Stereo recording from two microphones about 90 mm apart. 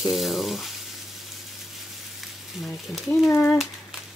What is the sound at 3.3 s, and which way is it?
Speech, 25° left (ahead or behind).